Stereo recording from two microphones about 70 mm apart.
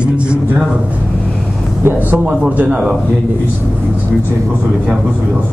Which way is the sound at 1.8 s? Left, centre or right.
Right.